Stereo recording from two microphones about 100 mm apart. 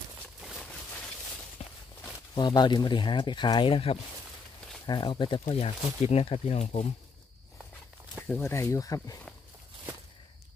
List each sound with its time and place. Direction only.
2.3 s speech: 45° left (ahead or behind); by 4.0 s 65° left (ahead or behind)
4.8 s speech: 50° left (ahead or behind)
5.6 s speech: 90° left
8.3 s speech: 25° left (ahead or behind)